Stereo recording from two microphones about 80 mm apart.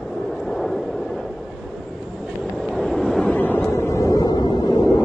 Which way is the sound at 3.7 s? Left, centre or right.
Left.